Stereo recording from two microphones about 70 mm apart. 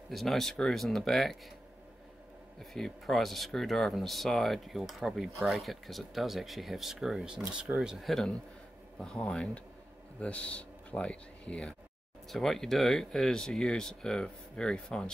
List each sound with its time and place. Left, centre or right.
0.1 s speech: centre
2.6 s speech: centre
8.1 s speech: centre